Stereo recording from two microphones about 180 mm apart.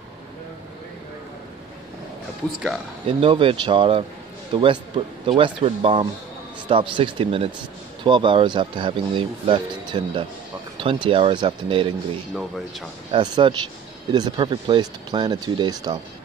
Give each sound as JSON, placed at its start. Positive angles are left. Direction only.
{"t": 3.1, "sound": "speech", "side_deg": -30}